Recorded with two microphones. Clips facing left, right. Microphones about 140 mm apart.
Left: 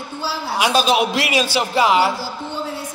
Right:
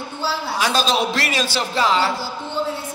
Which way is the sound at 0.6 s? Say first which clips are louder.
Left 4 dB; 10° left (ahead or behind).